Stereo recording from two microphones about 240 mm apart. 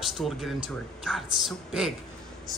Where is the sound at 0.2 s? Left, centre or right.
Centre.